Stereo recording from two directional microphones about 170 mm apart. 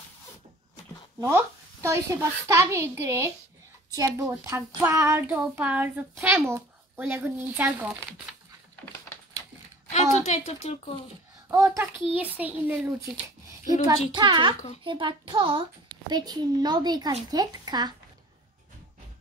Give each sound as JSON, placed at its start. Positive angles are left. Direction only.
{"t": 1.2, "sound": "a child's voice", "side_deg": -15}
{"t": 10.2, "sound": "speech", "side_deg": 40}
{"t": 11.5, "sound": "a child's voice", "side_deg": -20}
{"t": 14.1, "sound": "speech", "side_deg": -30}